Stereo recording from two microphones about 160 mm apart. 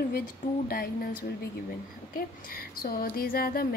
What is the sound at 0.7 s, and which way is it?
A woman's voice, 65° left (ahead or behind).